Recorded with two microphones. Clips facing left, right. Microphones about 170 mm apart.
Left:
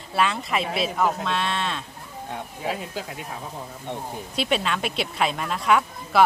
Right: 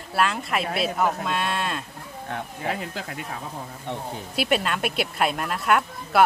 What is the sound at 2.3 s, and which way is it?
Speech, 60° right (ahead or behind).